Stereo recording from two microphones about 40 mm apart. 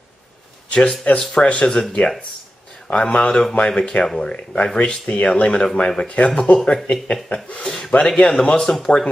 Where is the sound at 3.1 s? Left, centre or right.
Left; by 4.3 s centre.